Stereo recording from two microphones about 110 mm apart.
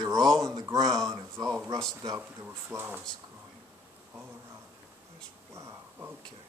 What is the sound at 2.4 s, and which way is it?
Speech, 20° right (ahead or behind).